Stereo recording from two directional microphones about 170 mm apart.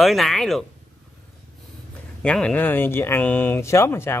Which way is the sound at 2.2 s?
5° left (ahead or behind).